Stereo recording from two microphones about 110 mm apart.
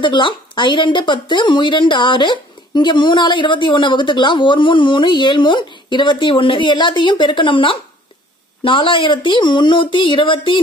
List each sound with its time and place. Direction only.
0.0 s a woman's voice: 45° left (ahead or behind)